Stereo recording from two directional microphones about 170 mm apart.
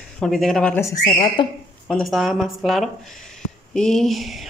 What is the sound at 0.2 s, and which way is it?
Speech, centre (ahead or behind).